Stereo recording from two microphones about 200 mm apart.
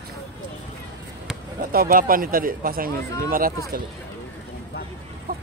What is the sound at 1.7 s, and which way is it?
A man's voice, 45° right (ahead or behind).